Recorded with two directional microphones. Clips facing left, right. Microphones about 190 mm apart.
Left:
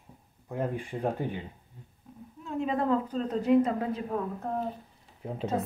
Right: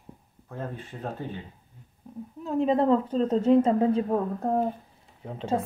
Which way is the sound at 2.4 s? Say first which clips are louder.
Right 6 dB; 35° right (ahead or behind).